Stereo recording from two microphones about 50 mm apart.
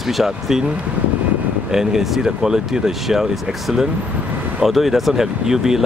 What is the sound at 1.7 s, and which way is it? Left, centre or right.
Speech, centre.